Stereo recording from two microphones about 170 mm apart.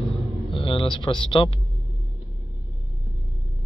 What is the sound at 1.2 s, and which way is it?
Speech, 30° left (ahead or behind).